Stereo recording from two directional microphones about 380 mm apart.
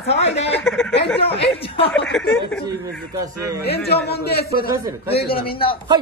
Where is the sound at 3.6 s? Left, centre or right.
Left.